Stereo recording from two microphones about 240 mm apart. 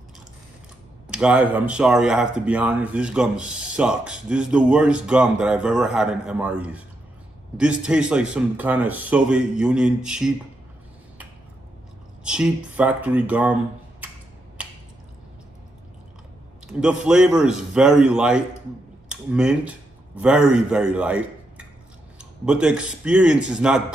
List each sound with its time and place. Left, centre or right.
1.1 s speech: centre
12.3 s speech: centre
16.6 s a man's voice: centre